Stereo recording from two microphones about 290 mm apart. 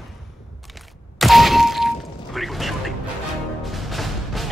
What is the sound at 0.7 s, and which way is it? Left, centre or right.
Thunk, centre.